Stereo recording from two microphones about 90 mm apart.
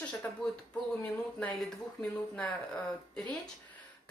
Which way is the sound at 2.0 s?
15° left (ahead or behind).